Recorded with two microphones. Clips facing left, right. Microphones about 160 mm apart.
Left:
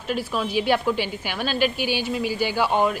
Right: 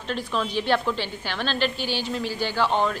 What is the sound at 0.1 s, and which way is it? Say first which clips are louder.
A woman's voice: left 2 dB; 10° left (ahead or behind).